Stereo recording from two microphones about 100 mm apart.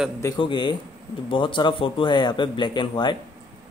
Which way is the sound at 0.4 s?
50° left (ahead or behind).